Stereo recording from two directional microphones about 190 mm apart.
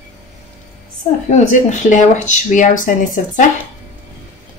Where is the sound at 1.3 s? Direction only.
40° left (ahead or behind).